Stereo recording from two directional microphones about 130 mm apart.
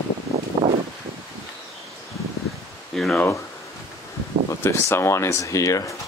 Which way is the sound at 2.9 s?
Centre (ahead or behind).